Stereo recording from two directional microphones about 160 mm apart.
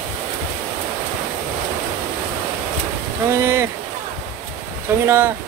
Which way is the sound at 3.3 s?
15° right (ahead or behind).